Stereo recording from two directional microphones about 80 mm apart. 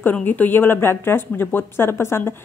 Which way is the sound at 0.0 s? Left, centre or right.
Left.